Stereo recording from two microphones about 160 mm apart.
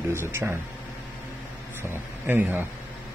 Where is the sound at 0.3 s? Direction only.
15° right (ahead or behind).